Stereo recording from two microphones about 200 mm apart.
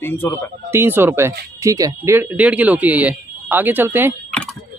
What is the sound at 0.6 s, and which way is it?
Speech, 10° right (ahead or behind).